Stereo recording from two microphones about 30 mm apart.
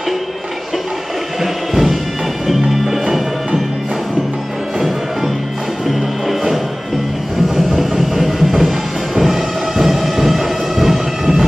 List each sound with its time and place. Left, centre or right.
1.4 s music: centre
4.7 s music: centre
7.5 s a sound: centre
8.5 s music: centre